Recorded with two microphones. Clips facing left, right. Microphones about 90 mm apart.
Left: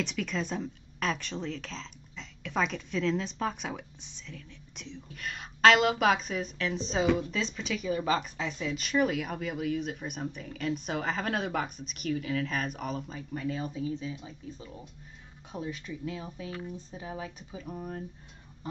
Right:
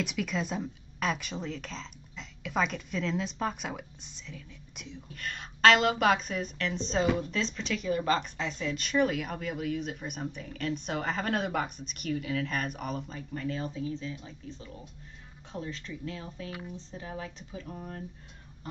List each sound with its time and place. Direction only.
0.0 s a woman's voice: 5° right (ahead or behind)